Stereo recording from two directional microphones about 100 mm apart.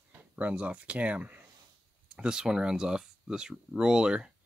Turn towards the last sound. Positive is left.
turn(degrees=-10)  # may be behind; listen again after turning